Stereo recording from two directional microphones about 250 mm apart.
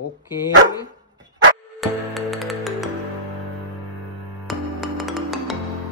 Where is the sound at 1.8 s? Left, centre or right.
Centre.